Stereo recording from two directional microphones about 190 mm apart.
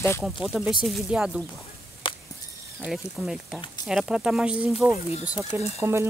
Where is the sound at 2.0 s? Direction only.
25° left (ahead or behind).